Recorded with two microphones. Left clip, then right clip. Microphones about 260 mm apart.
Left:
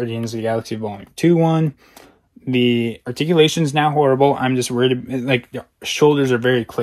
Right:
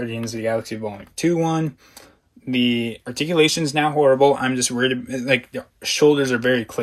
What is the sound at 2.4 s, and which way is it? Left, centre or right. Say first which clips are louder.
Speech: left 3 dB; left.